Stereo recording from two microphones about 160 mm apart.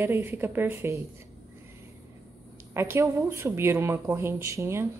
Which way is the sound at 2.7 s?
15° right (ahead or behind).